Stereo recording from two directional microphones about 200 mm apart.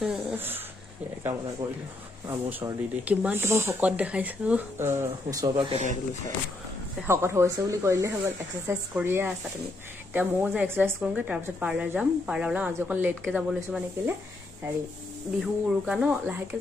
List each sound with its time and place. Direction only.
0.0 s a sound: 5° right (ahead or behind)
1.6 s speech: 10° right (ahead or behind)
5.7 s speech: 35° right (ahead or behind)
7.1 s speech: 15° right (ahead or behind)
15.4 s speech: 5° right (ahead or behind)